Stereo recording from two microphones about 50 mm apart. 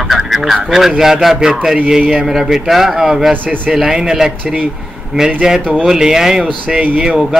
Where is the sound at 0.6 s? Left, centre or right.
Centre.